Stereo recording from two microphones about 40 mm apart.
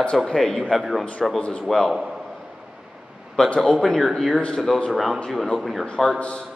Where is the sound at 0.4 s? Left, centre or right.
Centre.